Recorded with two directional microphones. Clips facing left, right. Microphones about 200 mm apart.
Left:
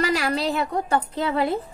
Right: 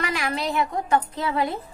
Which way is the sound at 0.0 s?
35° left (ahead or behind).